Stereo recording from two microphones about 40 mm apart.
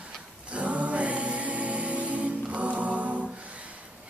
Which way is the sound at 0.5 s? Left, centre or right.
Right.